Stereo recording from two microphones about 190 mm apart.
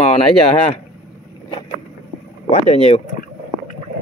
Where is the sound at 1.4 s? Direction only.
25° left (ahead or behind).